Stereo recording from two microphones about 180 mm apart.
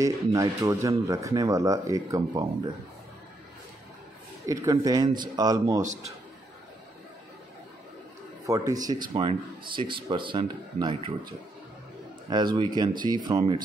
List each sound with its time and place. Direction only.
0.0 s speech: 20° right (ahead or behind)
4.5 s speech: 20° right (ahead or behind)
8.5 s speech: 20° right (ahead or behind)